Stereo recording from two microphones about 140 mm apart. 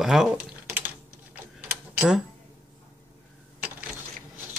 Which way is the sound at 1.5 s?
5° right (ahead or behind).